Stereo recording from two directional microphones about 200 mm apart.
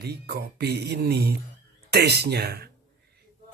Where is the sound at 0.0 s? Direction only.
55° right (ahead or behind).